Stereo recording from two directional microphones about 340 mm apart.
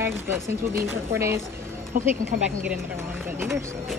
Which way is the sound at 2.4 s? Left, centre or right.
Centre.